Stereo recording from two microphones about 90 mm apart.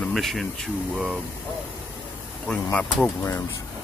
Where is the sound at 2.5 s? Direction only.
10° left (ahead or behind).